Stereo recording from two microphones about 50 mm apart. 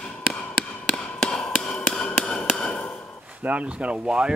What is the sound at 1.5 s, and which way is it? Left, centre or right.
Tap, centre.